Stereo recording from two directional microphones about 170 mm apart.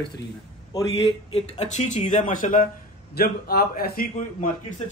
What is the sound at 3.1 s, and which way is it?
A man's voice, 65° left (ahead or behind).